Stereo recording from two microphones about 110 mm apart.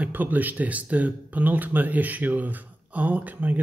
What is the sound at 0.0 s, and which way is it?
Speech, 15° right (ahead or behind).